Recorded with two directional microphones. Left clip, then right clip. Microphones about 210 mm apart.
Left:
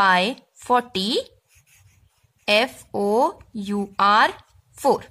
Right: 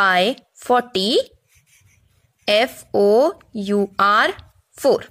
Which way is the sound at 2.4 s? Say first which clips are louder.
Right 2 dB; 15° right (ahead or behind).